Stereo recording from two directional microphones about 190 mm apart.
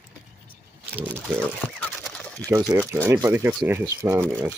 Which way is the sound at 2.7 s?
15° right (ahead or behind).